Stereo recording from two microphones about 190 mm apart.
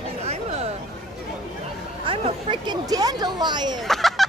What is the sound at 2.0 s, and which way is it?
Speech, 30° right (ahead or behind).